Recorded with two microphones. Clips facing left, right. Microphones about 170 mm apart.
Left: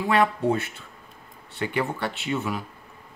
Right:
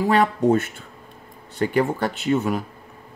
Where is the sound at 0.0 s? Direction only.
40° right (ahead or behind).